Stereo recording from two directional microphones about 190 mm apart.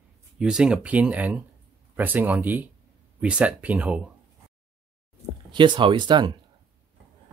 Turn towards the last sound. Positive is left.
turn(degrees=-25)  # may be behind; listen again after turning